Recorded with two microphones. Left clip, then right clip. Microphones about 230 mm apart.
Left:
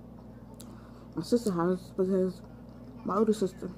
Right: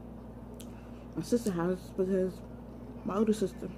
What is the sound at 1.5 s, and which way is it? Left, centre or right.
Speech, centre.